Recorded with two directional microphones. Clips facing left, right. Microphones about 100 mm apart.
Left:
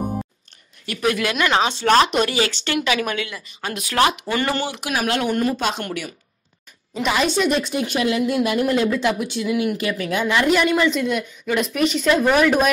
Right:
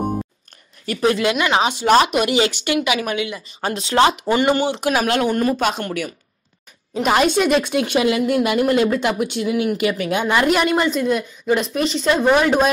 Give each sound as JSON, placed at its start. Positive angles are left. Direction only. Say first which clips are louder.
{"t": 0.8, "sound": "speech", "louder": "right 4 dB", "side_deg": -30}
{"t": 5.0, "sound": "a woman's voice", "louder": "left 1 dB", "side_deg": -40}
{"t": 7.0, "sound": "speech", "louder": "right 4 dB", "side_deg": -50}
{"t": 7.4, "sound": "speech", "louder": "right 3 dB", "side_deg": -85}
{"t": 8.8, "sound": "a woman's voice", "louder": "right 2 dB", "side_deg": -50}